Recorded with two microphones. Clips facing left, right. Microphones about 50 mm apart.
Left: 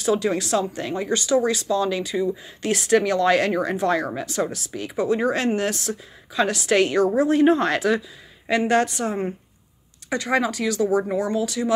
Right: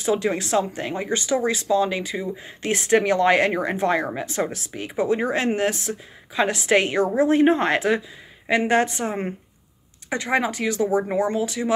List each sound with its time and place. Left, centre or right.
0.0 s speech: right